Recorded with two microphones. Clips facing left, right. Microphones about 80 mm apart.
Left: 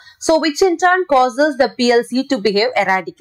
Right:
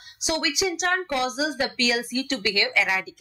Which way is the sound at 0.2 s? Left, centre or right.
Left.